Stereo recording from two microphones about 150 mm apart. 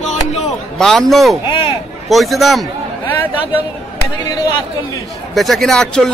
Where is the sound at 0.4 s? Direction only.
5° left (ahead or behind).